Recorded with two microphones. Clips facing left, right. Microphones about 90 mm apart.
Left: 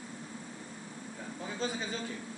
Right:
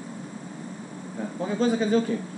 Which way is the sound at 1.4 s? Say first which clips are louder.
Right 13 dB; 65° right (ahead or behind).